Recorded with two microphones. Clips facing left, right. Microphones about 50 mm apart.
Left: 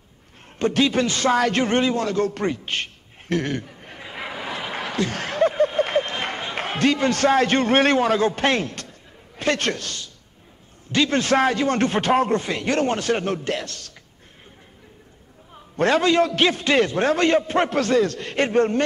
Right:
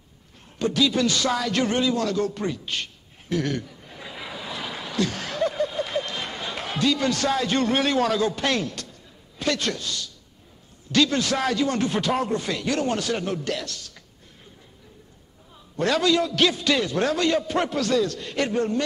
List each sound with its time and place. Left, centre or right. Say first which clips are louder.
0.6 s a man's voice: left 2 dB; left
3.4 s a sound: left 1 dB; left
8.0 s a man's voice: left 3 dB; left
11.1 s a man's voice: left 5 dB; left
15.5 s a man's voice: left 4 dB; left